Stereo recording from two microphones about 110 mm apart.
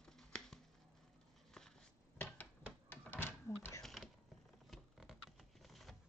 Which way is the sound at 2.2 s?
20° left (ahead or behind).